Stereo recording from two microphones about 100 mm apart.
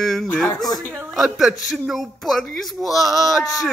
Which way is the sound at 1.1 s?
Centre (ahead or behind).